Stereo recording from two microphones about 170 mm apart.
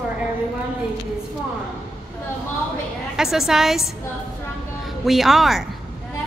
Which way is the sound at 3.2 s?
5° right (ahead or behind).